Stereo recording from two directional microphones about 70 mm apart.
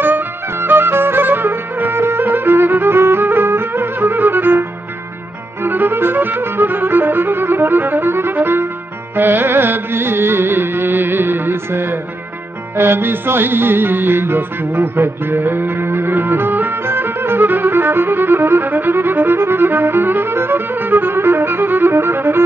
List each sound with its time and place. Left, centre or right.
0.0 s music: right
9.1 s carnatic music: right
12.7 s music: right